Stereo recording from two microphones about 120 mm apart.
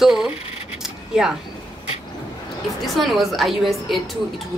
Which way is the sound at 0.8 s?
5° right (ahead or behind).